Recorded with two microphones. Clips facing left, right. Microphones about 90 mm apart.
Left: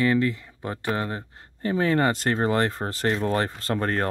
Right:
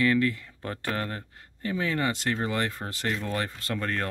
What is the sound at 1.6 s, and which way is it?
Speech, 40° left (ahead or behind).